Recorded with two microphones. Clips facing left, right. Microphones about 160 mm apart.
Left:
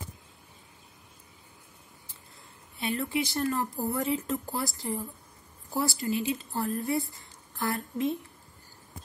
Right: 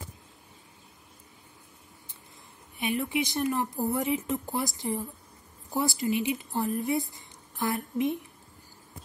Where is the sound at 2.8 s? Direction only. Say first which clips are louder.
Right 1 dB; 15° right (ahead or behind).